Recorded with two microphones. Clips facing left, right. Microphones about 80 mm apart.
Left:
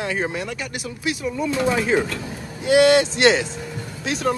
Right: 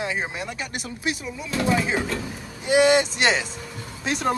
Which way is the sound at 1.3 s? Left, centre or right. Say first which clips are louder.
Left 2 dB; centre.